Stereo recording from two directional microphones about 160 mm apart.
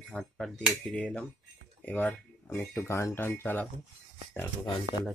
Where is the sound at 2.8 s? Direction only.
15° left (ahead or behind).